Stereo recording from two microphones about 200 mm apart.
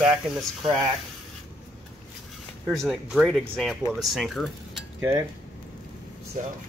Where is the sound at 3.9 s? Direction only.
Centre (ahead or behind).